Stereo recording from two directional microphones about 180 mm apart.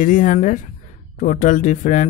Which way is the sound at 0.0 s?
45° left (ahead or behind).